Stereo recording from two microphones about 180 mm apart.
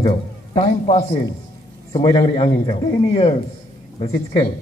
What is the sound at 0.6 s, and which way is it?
A man's voice, 35° left (ahead or behind).